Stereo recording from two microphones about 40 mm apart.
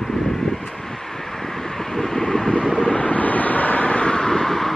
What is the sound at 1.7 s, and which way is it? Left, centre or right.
Vehicle, centre.